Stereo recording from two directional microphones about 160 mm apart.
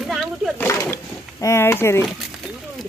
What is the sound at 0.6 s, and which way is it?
A woman's voice, 15° left (ahead or behind).